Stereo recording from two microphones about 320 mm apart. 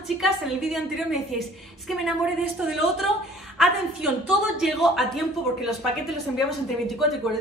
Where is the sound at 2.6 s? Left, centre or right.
Centre.